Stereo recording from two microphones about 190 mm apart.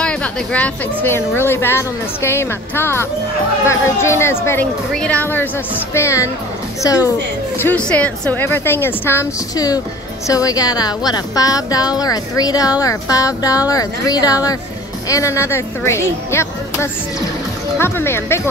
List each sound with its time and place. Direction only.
0.0 s a woman's voice: 5° left (ahead or behind)
7.6 s a woman's voice: 5° left (ahead or behind)